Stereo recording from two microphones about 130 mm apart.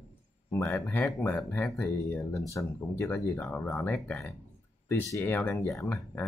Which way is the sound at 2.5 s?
25° left (ahead or behind).